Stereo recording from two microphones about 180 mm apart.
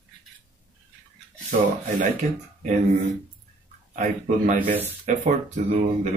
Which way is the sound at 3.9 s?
45° right (ahead or behind).